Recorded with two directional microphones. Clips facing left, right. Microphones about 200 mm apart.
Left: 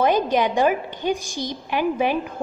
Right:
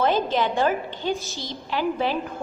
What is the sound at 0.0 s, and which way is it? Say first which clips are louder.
A woman's voice: left 3 dB; 15° left (ahead or behind).